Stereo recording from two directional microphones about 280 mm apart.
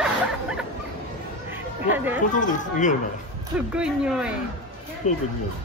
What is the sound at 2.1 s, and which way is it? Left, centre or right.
Speech, left.